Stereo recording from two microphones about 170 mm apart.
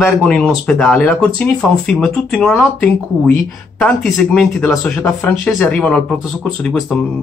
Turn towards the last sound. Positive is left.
turn(degrees=5)  # may be behind; listen again after turning